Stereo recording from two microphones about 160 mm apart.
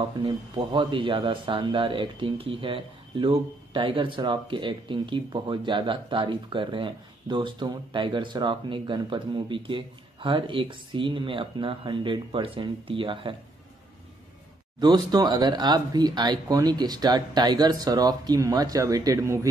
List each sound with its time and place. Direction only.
0.7 s speech: 30° right (ahead or behind)
14.8 s speech: 25° right (ahead or behind)